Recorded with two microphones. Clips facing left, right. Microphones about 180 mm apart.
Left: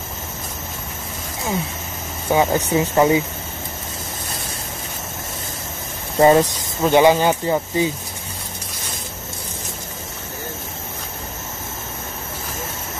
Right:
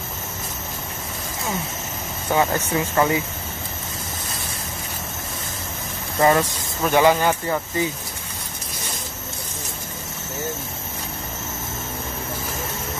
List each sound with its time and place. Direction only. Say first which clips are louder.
2.2 s speech: left 3 dB; 15° left (ahead or behind)
6.1 s speech: left 5 dB; 25° left (ahead or behind)